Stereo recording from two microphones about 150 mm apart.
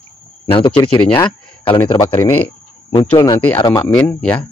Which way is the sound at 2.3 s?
15° left (ahead or behind).